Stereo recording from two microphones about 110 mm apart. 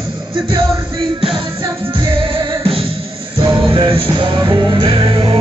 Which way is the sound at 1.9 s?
50° right (ahead or behind).